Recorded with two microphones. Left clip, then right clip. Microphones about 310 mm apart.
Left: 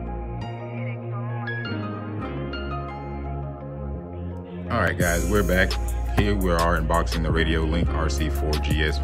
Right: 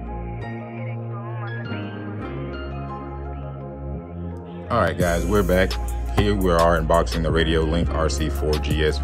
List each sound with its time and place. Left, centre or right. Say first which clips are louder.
4.6 s speech: right 3 dB; centre